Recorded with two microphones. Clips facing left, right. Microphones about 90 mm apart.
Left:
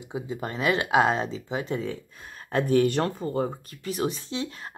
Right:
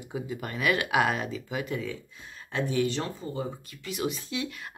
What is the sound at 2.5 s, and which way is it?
Speech, 45° left (ahead or behind).